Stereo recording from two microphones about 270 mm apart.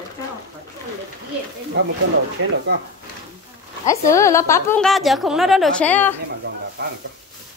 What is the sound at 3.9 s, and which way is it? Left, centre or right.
A woman's voice, centre.